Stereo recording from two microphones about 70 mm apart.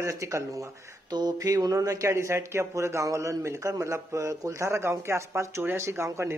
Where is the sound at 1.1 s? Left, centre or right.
Right.